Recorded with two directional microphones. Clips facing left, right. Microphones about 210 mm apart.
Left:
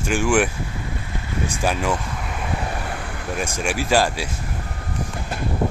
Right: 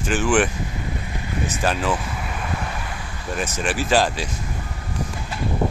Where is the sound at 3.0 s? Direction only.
60° left (ahead or behind).